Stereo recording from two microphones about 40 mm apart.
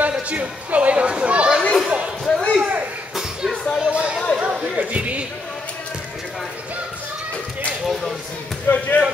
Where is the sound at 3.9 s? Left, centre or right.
Right.